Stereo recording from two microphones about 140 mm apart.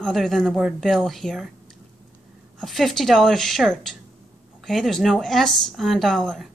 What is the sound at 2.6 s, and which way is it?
Speech, centre (ahead or behind).